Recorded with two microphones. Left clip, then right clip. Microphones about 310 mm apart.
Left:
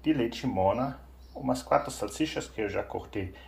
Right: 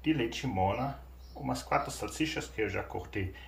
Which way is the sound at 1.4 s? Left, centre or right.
Centre.